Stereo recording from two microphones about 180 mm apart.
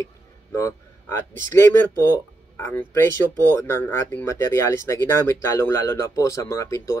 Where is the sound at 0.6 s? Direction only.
15° left (ahead or behind).